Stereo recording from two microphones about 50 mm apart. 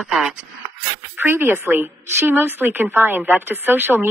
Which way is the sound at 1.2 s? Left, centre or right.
Right.